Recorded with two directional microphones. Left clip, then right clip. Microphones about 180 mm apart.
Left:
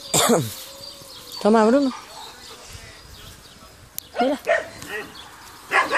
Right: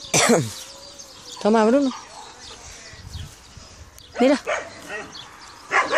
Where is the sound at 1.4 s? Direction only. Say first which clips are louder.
Left 1 dB; 5° left (ahead or behind).